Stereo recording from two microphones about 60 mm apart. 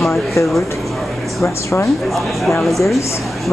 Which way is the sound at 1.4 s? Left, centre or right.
Left.